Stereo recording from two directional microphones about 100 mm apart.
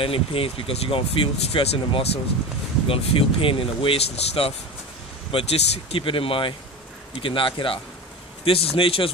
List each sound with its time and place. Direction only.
0.0 s speech: 65° left (ahead or behind); by 4.6 s 80° left
5.3 s speech: 90° left; by 7.8 s 60° left (ahead or behind)
8.5 s speech: 70° left (ahead or behind)